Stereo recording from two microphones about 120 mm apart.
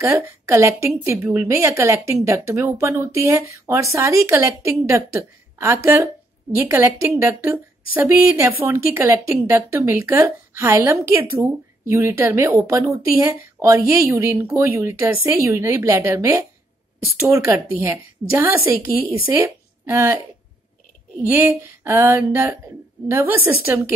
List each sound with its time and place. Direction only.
0.0 s a woman's voice: 20° right (ahead or behind)
21.3 s speech: 15° right (ahead or behind)